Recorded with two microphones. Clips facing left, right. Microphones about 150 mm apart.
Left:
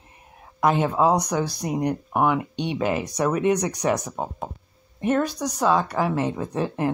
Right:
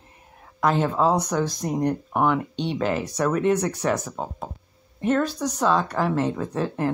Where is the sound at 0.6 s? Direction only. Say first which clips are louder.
Left 1 dB; 15° left (ahead or behind).